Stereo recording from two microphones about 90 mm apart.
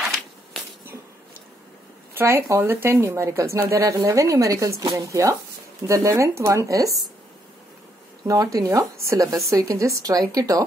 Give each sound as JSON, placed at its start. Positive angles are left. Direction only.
{"t": 2.1, "sound": "speech", "side_deg": -30}
{"t": 8.3, "sound": "speech", "side_deg": -40}